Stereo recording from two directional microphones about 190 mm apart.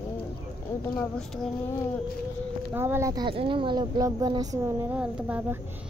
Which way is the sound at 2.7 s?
10° right (ahead or behind).